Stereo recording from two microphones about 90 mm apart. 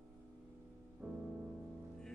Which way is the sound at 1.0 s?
5° right (ahead or behind).